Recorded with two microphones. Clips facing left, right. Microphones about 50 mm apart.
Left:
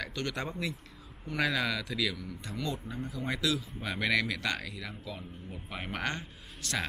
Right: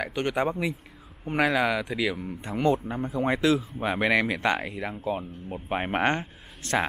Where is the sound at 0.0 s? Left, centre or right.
Right.